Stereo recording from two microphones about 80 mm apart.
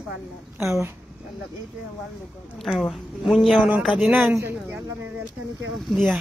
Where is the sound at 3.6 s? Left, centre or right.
Right.